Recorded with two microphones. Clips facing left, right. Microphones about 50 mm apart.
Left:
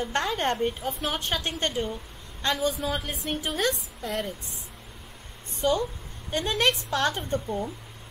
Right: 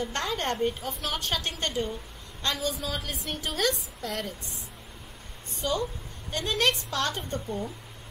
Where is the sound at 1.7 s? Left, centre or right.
Centre.